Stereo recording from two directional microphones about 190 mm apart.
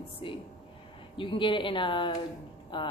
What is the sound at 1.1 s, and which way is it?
A woman's voice, 25° left (ahead or behind).